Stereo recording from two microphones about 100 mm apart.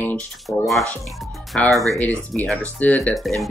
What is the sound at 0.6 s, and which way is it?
Speech, centre (ahead or behind).